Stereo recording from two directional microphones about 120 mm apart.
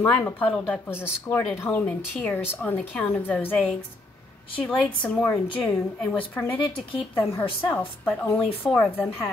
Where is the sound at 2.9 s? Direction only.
5° left (ahead or behind).